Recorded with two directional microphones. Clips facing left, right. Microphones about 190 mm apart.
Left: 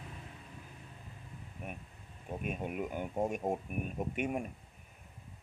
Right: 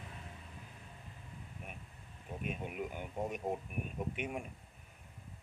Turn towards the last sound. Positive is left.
turn(degrees=45)  # may be behind; listen again after turning